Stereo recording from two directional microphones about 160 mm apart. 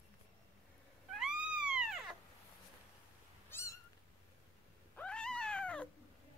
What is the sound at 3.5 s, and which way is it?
Cat, 15° left (ahead or behind).